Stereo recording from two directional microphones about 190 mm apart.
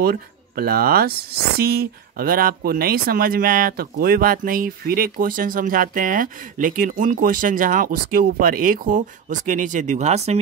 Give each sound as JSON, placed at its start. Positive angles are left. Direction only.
{"t": 0.0, "sound": "speech", "side_deg": -55}